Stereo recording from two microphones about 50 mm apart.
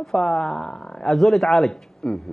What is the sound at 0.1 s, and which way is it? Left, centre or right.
Speech, centre.